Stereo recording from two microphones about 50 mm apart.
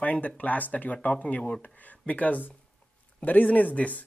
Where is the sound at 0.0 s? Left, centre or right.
Left.